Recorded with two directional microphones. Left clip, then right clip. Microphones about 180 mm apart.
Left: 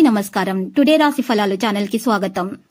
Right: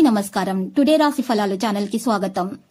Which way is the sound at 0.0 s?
15° left (ahead or behind).